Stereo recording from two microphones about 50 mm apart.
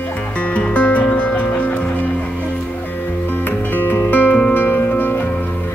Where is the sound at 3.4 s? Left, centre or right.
Left.